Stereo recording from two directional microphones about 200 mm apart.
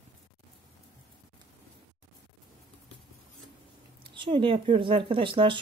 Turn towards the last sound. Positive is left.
turn(degrees=-25)  # may be behind; listen again after turning